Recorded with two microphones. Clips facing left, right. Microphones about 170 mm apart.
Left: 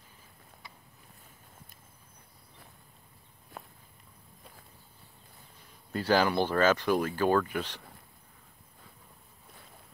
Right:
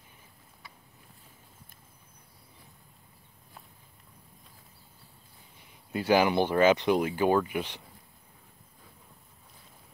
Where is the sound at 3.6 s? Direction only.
70° left (ahead or behind).